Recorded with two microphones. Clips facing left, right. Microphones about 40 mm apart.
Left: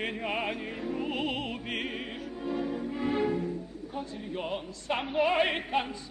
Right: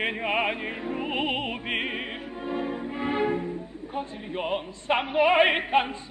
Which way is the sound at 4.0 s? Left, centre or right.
Right.